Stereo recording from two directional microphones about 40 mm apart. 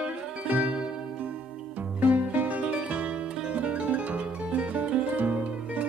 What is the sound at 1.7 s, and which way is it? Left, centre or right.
Music, right.